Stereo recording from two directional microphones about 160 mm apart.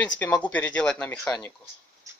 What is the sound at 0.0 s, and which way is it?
Speech, 10° left (ahead or behind).